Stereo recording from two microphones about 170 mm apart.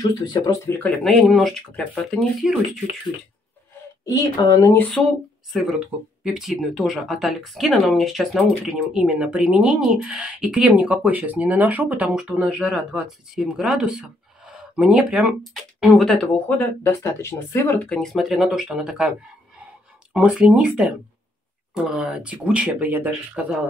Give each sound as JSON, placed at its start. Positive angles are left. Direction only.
{"t": 0.0, "sound": "speech", "side_deg": 25}
{"t": 1.0, "sound": "speech", "side_deg": 0}
{"t": 4.0, "sound": "speech", "side_deg": 20}
{"t": 5.5, "sound": "speech", "side_deg": -5}
{"t": 19.6, "sound": "a sound", "side_deg": -5}
{"t": 21.7, "sound": "speech", "side_deg": -5}